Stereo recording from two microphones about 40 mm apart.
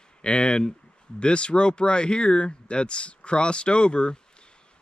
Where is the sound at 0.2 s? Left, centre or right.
Left.